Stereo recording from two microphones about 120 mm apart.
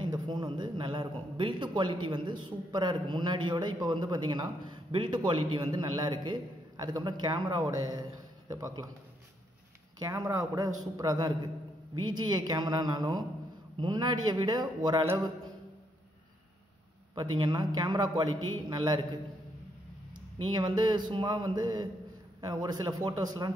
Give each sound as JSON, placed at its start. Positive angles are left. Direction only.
{"t": 0.0, "sound": "a sound", "side_deg": -35}
{"t": 1.3, "sound": "a woman's voice", "side_deg": -45}
{"t": 9.9, "sound": "a man's voice", "side_deg": -25}
{"t": 17.1, "sound": "a woman's voice", "side_deg": -40}
{"t": 20.5, "sound": "a woman's voice", "side_deg": -35}